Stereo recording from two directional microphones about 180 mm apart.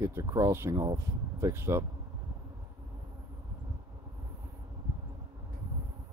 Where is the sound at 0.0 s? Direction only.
15° right (ahead or behind).